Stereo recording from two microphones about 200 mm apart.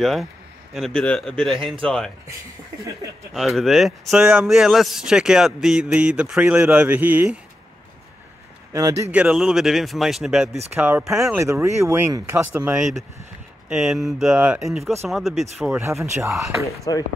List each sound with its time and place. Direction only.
0.0 s a man's voice: centre (ahead or behind)
3.3 s a man's voice: centre (ahead or behind)
8.7 s speech: 15° right (ahead or behind)
9.1 s a man's voice: 5° right (ahead or behind)
13.7 s a man's voice: centre (ahead or behind)
16.6 s speech: 15° left (ahead or behind)